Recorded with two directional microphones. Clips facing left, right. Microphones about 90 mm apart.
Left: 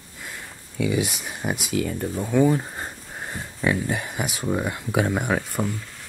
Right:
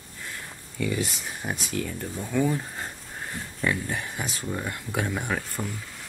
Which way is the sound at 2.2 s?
15° left (ahead or behind).